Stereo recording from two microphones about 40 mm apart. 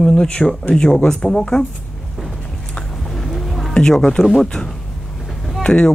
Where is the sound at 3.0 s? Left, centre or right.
Centre.